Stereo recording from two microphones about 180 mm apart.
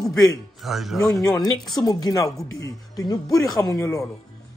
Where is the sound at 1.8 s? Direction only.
20° left (ahead or behind).